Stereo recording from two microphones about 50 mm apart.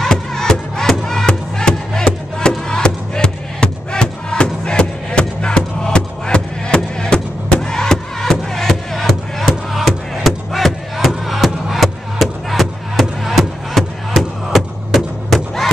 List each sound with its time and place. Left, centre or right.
0.0 s music: centre